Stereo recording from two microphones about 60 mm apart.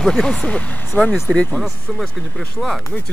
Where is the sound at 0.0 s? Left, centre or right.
Centre.